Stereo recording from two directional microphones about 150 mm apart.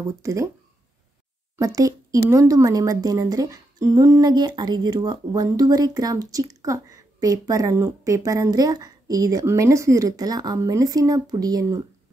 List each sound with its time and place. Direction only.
0.2 s speech: 20° right (ahead or behind)
1.6 s speech: 20° right (ahead or behind)